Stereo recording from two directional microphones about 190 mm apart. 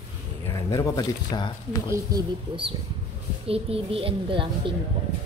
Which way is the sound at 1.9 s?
20° right (ahead or behind).